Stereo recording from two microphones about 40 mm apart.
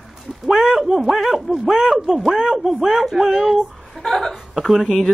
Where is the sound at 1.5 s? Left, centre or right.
Centre.